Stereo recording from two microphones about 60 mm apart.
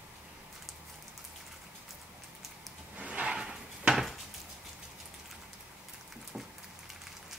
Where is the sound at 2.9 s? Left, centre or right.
Right; by 4.1 s centre.